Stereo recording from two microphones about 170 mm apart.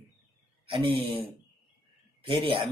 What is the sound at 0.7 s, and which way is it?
Speech, 30° right (ahead or behind).